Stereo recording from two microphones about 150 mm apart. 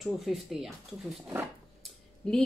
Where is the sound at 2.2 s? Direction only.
5° left (ahead or behind).